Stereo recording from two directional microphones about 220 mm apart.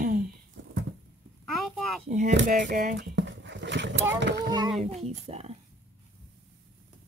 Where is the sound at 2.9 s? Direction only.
50° right (ahead or behind).